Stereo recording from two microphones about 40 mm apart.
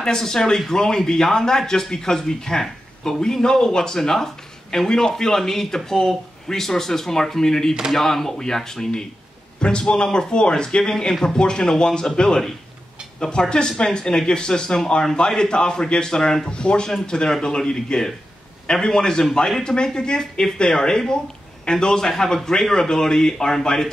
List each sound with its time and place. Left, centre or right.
0.0 s speech: centre
9.6 s speech: left